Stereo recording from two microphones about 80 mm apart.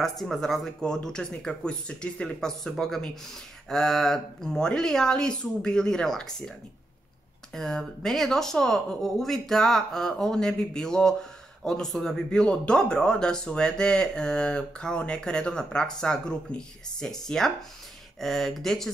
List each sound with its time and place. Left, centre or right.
0.0 s speech: centre
7.5 s speech: centre